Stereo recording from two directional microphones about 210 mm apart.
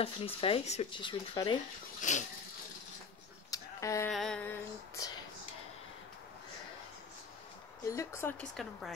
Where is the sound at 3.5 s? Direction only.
15° left (ahead or behind).